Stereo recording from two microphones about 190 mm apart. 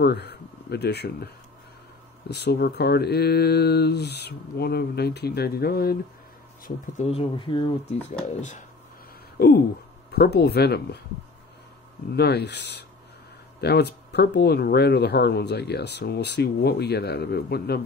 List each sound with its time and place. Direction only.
0.0 s speech: 60° left (ahead or behind)
6.6 s speech: 40° left (ahead or behind)
8.4 s speech: 40° left (ahead or behind)
9.4 s speech: 55° left (ahead or behind)
12.2 s speech: 60° left (ahead or behind)